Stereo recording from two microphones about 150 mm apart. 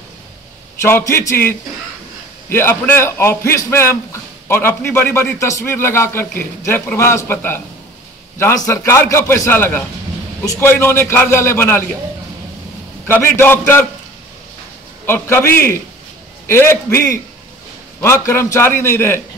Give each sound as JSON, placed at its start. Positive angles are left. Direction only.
{"t": 0.7, "sound": "a man's voice", "side_deg": 15}
{"t": 2.5, "sound": "a man's voice", "side_deg": 15}
{"t": 13.0, "sound": "a man's voice", "side_deg": 15}
{"t": 15.0, "sound": "a man's voice", "side_deg": 15}